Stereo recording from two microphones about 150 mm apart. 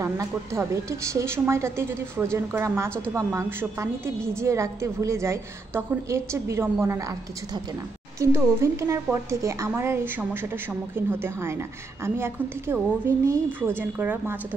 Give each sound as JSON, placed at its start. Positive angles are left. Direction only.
{"t": 0.0, "sound": "a woman's voice", "side_deg": -15}
{"t": 8.2, "sound": "a woman's voice", "side_deg": -15}